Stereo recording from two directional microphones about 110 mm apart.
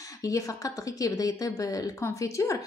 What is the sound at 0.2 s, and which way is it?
A woman's voice, 30° left (ahead or behind).